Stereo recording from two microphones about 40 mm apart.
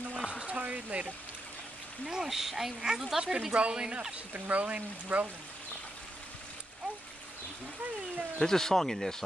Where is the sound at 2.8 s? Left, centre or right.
Centre.